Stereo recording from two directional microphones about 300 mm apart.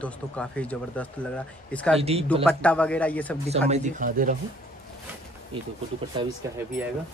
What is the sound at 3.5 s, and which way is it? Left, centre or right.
Speech, right.